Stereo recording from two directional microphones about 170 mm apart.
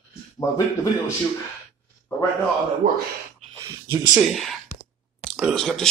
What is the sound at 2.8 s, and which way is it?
Speech, 55° right (ahead or behind).